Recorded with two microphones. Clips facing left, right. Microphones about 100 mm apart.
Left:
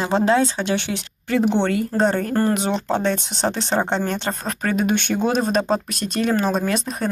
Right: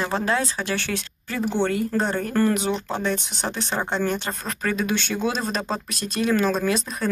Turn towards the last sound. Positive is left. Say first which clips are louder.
# left 1 dB
turn(degrees=65)  # may be behind; listen again after turning